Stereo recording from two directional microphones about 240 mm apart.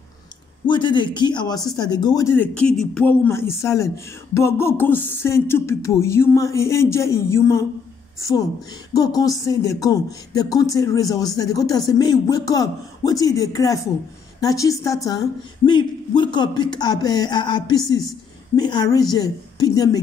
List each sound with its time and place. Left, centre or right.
0.7 s a man's voice: centre